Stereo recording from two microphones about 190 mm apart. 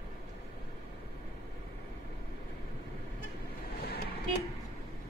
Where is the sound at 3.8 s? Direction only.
55° left (ahead or behind).